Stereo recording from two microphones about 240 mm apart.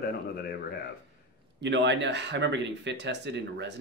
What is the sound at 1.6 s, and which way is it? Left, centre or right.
Speech, right.